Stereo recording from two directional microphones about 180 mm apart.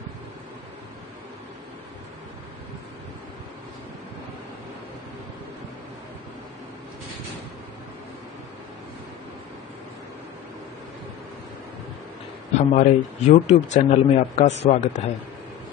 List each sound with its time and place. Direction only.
12.5 s speech: 40° left (ahead or behind)